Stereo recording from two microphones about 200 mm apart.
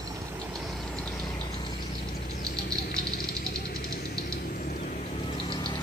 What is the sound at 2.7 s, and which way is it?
Vehicle, 50° left (ahead or behind).